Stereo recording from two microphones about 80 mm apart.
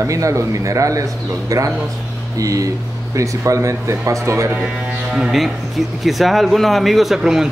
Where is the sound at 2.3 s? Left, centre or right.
Right.